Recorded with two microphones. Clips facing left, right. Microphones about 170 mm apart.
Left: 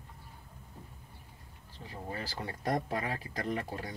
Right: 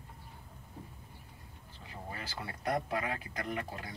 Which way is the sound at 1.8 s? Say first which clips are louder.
Left 4 dB; 35° left (ahead or behind).